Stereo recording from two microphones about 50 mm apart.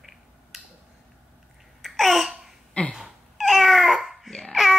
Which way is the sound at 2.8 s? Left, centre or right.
Left.